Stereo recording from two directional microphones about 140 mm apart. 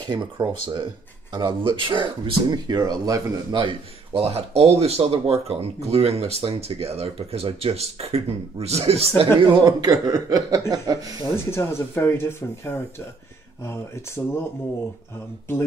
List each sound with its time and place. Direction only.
0.0 s speech: 30° right (ahead or behind)
9.6 s speech: 30° right (ahead or behind)
11.3 s speech: 15° left (ahead or behind)